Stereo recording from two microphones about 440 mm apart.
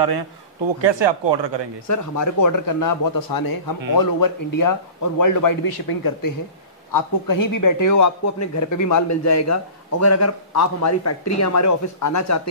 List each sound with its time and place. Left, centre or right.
0.7 s speech: right
1.9 s speech: left